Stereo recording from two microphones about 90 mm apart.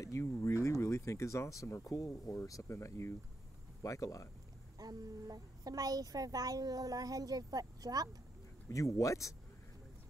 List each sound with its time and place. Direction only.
0.2 s speech: 35° left (ahead or behind)
4.7 s a child's voice: 45° right (ahead or behind)
8.6 s speech: 35° left (ahead or behind)